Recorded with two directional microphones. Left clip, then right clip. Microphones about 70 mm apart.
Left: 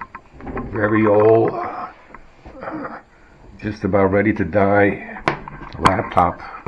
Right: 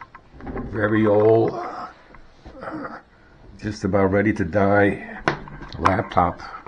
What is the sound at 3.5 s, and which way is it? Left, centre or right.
Speech, right.